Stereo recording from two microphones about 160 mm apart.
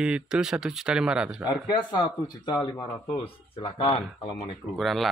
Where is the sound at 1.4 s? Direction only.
25° left (ahead or behind).